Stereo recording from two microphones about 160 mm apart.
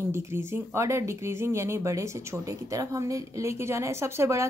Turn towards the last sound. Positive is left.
turn(degrees=-15)  # may be behind; listen again after turning